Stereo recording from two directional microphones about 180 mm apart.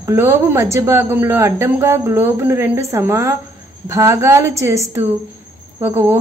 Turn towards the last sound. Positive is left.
turn(degrees=-15)  # may be behind; listen again after turning